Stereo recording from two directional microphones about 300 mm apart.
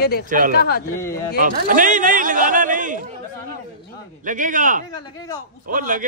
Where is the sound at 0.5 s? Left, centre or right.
Left.